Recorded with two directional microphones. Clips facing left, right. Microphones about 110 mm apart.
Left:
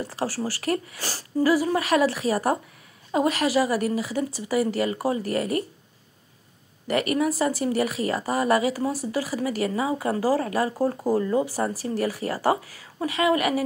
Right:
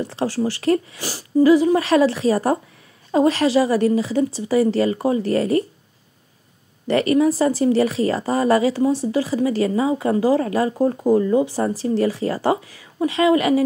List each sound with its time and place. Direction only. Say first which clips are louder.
0.1 s speech: right 6 dB; 20° right (ahead or behind)
6.9 s speech: right 7 dB; 30° right (ahead or behind)